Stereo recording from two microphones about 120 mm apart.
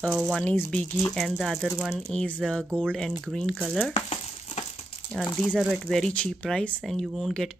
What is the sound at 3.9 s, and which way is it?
Frying, 65° left (ahead or behind).